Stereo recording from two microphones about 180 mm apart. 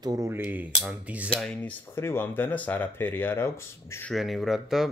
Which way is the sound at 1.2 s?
5° left (ahead or behind).